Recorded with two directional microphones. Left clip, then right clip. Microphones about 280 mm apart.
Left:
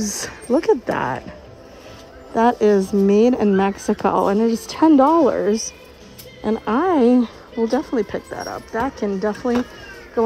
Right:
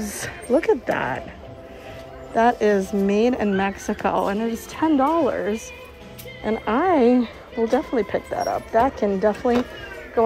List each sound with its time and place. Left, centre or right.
0.0 s speech: centre
2.3 s a woman's voice: centre